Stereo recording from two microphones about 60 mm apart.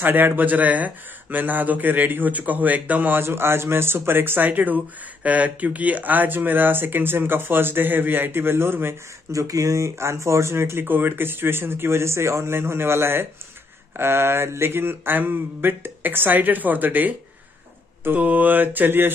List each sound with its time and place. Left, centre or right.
0.0 s speech: right
3.2 s speech: right
9.3 s speech: right